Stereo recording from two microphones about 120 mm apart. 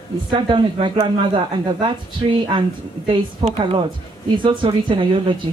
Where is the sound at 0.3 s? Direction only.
40° right (ahead or behind).